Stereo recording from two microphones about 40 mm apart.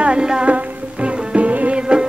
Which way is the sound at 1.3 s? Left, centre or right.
Right.